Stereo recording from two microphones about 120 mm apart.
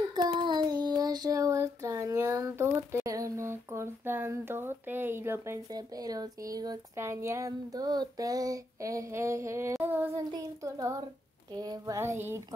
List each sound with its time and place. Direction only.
0.1 s child singing: 35° right (ahead or behind); by 5.6 s 20° right (ahead or behind)
5.7 s speech: 30° right (ahead or behind)
7.0 s child singing: 25° right (ahead or behind)
11.5 s speech: 30° right (ahead or behind)
12.0 s child singing: 20° right (ahead or behind)